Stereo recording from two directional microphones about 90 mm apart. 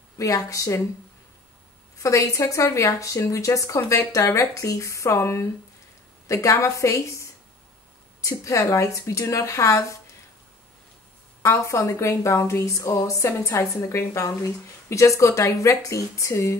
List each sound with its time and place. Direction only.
0.5 s a woman's voice: 35° left (ahead or behind)
2.0 s a woman's voice: 35° left (ahead or behind)
11.4 s a woman's voice: 35° left (ahead or behind)